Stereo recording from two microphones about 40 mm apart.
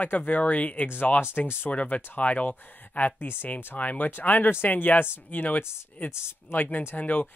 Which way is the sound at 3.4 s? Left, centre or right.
Left.